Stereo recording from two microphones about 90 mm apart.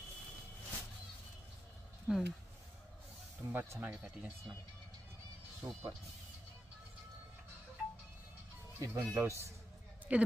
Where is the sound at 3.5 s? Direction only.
20° right (ahead or behind).